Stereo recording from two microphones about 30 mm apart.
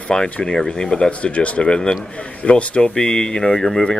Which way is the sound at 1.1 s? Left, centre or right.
Left.